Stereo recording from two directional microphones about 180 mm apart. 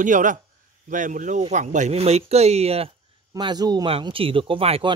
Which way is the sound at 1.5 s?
40° right (ahead or behind).